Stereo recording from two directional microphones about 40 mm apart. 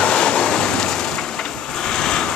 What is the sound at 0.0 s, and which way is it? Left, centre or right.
Vehicle, left.